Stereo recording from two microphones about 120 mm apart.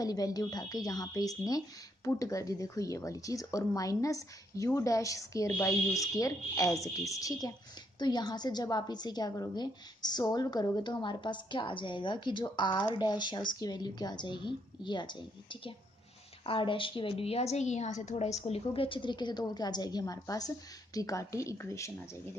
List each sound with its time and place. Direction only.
0.0 s a woman's voice: 30° left (ahead or behind); by 18.6 s 65° left (ahead or behind)
18.7 s a woman's voice: 45° left (ahead or behind); by 21.9 s 25° left (ahead or behind)